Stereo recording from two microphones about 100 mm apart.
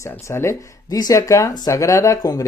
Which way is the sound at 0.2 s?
30° left (ahead or behind).